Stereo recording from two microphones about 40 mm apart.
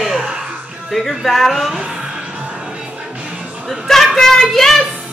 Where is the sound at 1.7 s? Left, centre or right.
Right.